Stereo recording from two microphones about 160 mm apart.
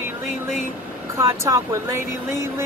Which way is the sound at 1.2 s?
15° right (ahead or behind).